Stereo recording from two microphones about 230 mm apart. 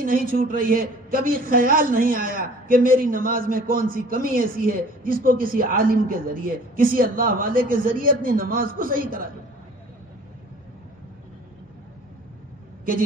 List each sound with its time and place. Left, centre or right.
0.0 s a man's voice: right